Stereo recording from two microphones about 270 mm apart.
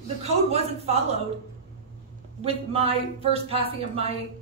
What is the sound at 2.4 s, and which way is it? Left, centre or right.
Speech, right.